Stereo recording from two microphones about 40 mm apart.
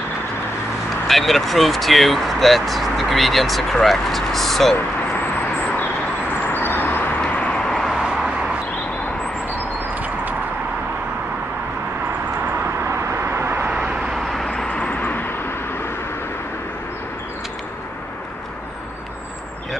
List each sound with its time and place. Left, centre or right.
1.0 s speech: centre
6.5 s vehicle: left
7.2 s vehicle: left
7.6 s vehicle: centre
7.9 s vehicle: centre
9.9 s a sound: right
13.3 s vehicle: right
13.7 s vehicle: right
14.9 s vehicle: left